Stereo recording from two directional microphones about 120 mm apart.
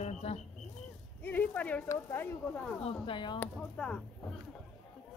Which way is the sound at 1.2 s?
15° left (ahead or behind).